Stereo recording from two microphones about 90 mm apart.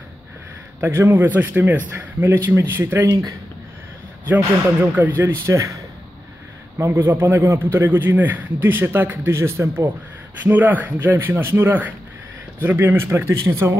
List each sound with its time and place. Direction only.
0.7 s a man's voice: 25° right (ahead or behind)
4.3 s a man's voice: 20° right (ahead or behind)
6.8 s a man's voice: 25° right (ahead or behind)